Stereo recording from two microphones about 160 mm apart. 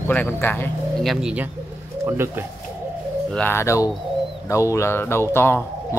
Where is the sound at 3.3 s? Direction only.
10° left (ahead or behind).